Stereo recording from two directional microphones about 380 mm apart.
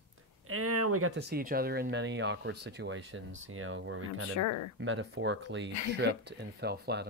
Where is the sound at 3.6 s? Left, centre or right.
Right.